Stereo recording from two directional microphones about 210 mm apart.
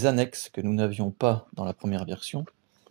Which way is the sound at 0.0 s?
40° right (ahead or behind).